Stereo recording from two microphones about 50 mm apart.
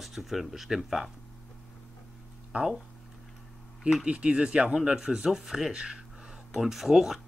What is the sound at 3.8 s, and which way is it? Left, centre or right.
Speech, centre.